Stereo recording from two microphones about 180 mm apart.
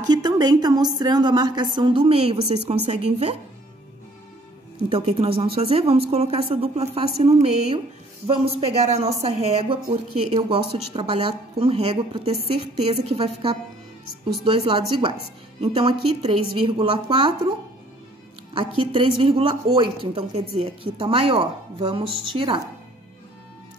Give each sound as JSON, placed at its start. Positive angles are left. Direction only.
{"t": 0.1, "sound": "a woman's voice", "side_deg": -25}
{"t": 4.9, "sound": "a woman's voice", "side_deg": -35}
{"t": 18.8, "sound": "a woman's voice", "side_deg": -30}